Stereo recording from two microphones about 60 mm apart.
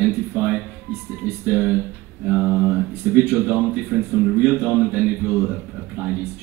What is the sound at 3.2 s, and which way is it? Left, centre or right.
Speech, left.